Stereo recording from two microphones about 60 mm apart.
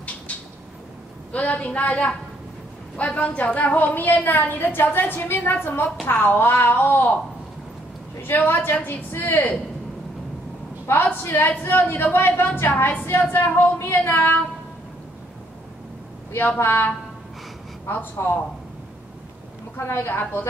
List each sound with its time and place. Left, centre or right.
1.3 s a man's voice: left
8.2 s a woman's voice: left
10.9 s a woman's voice: left
16.5 s a woman's voice: left
19.8 s a woman's voice: left